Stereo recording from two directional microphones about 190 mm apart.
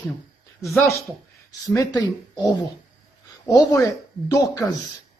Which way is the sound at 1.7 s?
20° left (ahead or behind).